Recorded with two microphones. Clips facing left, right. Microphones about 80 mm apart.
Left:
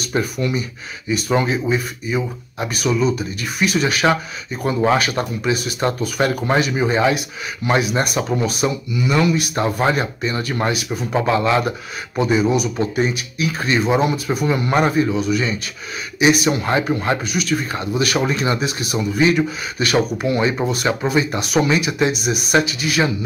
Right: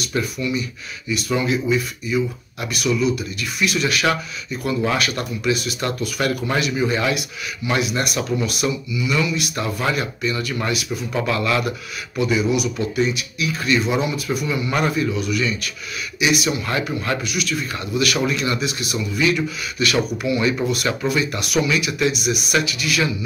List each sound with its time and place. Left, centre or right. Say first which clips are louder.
0.2 s speech: left 1 dB; left
6.0 s speech: left 2 dB; left